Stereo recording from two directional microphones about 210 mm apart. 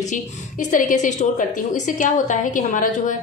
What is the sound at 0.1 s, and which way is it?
A woman's voice, 35° left (ahead or behind).